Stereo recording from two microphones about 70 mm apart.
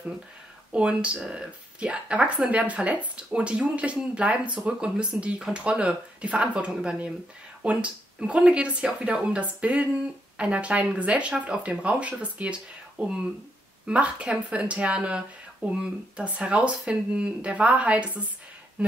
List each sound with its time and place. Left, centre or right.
0.7 s speech: centre